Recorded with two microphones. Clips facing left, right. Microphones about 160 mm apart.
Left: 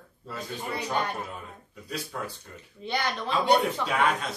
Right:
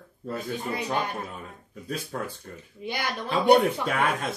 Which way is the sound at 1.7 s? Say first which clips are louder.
Right 3 dB; 50° right (ahead or behind).